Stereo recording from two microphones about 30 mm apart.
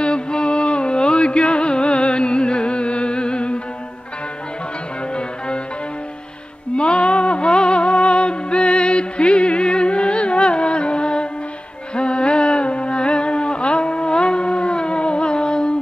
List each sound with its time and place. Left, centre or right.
0.0 s music: left
6.8 s music: left